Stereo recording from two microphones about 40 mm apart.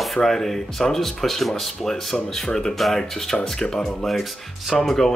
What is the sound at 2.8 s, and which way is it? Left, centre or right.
Speech, centre.